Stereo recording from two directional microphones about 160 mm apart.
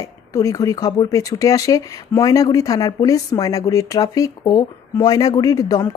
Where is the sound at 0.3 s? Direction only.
20° left (ahead or behind).